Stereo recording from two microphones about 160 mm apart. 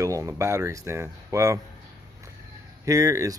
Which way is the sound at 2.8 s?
20° right (ahead or behind).